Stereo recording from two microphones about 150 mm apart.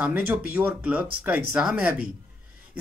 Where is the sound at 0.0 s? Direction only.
10° right (ahead or behind).